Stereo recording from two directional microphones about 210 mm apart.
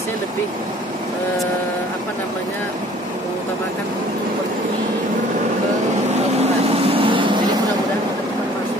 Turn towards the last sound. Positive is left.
turn(degrees=-25)  # may be behind; listen again after turning